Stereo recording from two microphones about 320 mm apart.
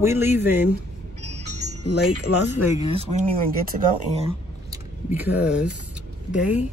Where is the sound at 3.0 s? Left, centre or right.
Right.